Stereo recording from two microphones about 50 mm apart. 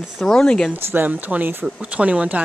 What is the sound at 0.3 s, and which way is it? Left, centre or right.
Speech, centre.